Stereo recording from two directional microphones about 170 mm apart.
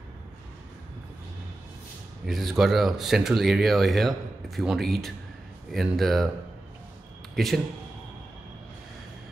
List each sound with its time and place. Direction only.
2.2 s speech: centre (ahead or behind)
7.3 s speech: centre (ahead or behind)